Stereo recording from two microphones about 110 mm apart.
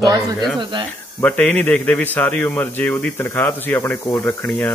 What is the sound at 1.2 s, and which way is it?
Speech, 15° left (ahead or behind).